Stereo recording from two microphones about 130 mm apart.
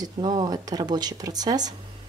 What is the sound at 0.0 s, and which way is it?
Speech, 35° right (ahead or behind).